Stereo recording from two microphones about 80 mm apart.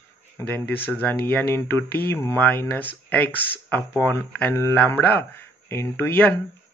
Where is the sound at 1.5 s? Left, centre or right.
Left.